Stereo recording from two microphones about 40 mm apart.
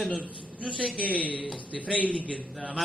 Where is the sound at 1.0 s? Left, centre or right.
Left.